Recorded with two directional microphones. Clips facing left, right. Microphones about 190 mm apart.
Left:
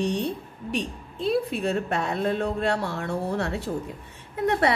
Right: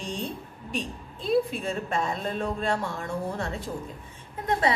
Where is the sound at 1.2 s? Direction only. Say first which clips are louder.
Left 1 dB; 65° left (ahead or behind).